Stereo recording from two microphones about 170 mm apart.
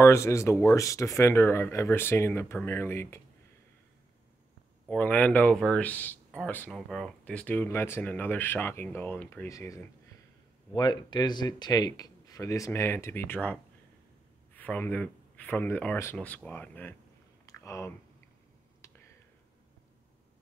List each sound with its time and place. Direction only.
0.0 s speech: 15° left (ahead or behind)
4.8 s speech: 10° left (ahead or behind)
17.5 s a sound: 15° left (ahead or behind)